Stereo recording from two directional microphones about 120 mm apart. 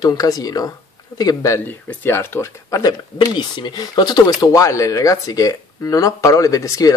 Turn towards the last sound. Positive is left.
turn(degrees=30)  # may be behind; listen again after turning